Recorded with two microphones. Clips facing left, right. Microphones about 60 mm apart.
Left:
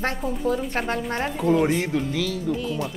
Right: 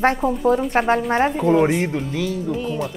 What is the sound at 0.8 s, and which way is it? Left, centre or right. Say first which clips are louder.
Speech: right 8 dB; right.